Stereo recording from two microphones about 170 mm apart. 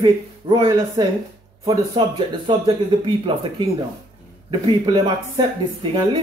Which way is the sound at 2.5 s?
30° right (ahead or behind).